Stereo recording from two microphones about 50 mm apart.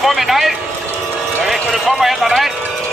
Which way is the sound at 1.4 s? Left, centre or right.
Centre.